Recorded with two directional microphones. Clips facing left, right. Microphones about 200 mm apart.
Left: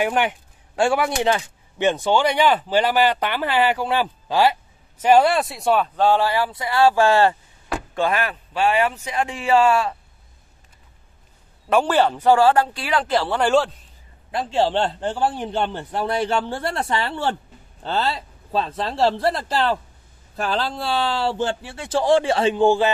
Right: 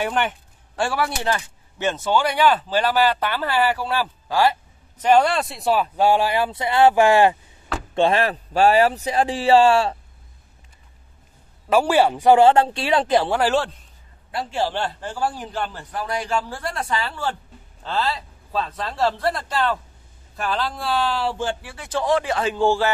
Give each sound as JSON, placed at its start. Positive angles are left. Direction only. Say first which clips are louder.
{"t": 0.0, "sound": "speech", "louder": "left 2 dB", "side_deg": 15}
{"t": 5.0, "sound": "speech", "louder": "left 2 dB", "side_deg": 10}
{"t": 7.9, "sound": "speech", "louder": "right 4 dB", "side_deg": -30}
{"t": 11.7, "sound": "speech", "louder": "right 1 dB", "side_deg": -10}
{"t": 13.4, "sound": "a man's voice", "louder": "left 2 dB", "side_deg": -5}
{"t": 14.3, "sound": "a man's voice", "louder": "left 4 dB", "side_deg": 20}